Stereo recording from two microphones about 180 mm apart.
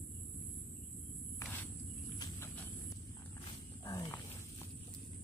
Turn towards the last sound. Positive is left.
turn(degrees=15)  # may be behind; listen again after turning